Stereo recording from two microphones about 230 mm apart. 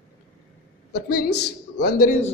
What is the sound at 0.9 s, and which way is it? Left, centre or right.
A woman's voice, left.